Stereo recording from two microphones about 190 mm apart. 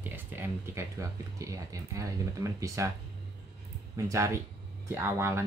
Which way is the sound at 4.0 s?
15° right (ahead or behind).